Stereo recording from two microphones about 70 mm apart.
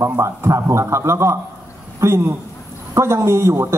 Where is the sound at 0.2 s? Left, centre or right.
Right.